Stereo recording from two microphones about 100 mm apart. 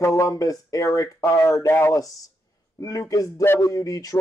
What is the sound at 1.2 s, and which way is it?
Speech, 30° left (ahead or behind).